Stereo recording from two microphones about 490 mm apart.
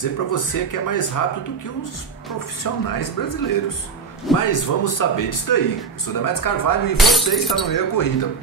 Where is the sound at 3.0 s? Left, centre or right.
Left.